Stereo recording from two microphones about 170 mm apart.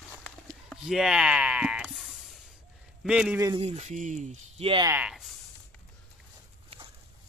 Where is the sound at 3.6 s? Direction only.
40° right (ahead or behind).